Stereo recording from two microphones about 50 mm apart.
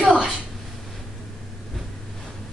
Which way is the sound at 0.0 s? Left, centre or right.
Centre.